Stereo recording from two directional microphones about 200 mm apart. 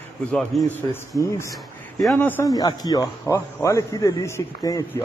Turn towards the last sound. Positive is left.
turn(degrees=15)  # may be behind; listen again after turning